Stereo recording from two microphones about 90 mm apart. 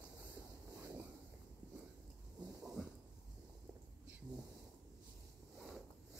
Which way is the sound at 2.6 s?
5° right (ahead or behind).